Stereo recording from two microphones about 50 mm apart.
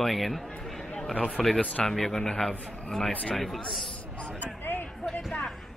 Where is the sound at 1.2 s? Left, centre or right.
Left.